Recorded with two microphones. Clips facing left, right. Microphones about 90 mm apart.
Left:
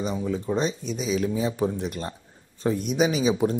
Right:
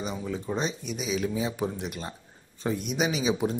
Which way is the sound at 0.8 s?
40° left (ahead or behind).